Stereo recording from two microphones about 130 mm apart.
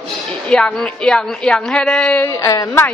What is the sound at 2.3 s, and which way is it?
Speech, 25° left (ahead or behind).